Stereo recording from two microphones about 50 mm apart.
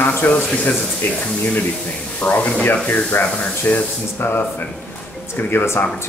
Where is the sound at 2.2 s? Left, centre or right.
Left.